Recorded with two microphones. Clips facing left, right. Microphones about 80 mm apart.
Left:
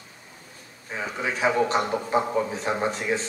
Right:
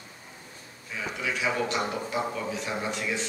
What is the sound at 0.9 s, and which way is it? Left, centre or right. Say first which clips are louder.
A man's voice: left 3 dB; left.